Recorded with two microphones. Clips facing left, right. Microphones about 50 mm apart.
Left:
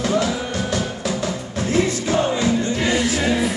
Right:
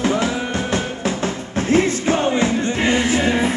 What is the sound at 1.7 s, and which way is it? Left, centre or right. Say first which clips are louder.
Music: right 3 dB; right.